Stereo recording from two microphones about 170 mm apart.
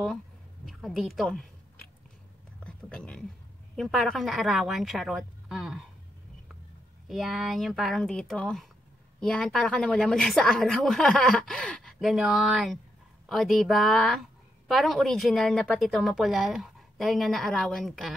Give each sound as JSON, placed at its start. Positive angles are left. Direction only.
{"t": 0.7, "sound": "a sound", "side_deg": 0}
{"t": 3.7, "sound": "a woman's voice", "side_deg": 5}
{"t": 7.1, "sound": "a woman's voice", "side_deg": 0}